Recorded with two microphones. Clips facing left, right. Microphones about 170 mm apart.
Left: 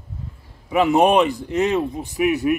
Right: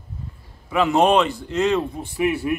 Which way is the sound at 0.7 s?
10° left (ahead or behind).